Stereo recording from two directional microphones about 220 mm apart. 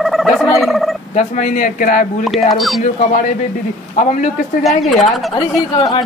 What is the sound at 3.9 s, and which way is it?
Speech, 35° left (ahead or behind).